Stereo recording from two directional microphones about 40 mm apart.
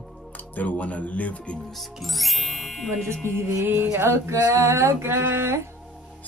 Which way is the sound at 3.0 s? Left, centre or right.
Right.